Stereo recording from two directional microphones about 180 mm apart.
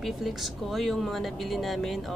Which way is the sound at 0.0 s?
Centre (ahead or behind).